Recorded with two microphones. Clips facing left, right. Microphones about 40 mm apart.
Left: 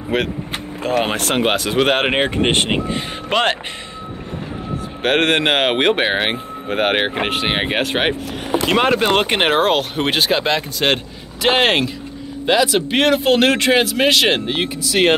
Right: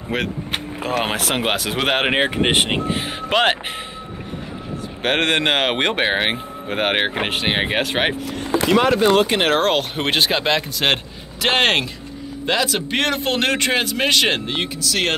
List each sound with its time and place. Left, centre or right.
0.1 s speech: centre
5.0 s speech: centre
8.7 s speech: left
9.6 s speech: centre